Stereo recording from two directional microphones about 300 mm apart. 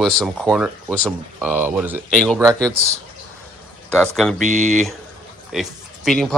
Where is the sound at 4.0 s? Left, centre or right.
Centre.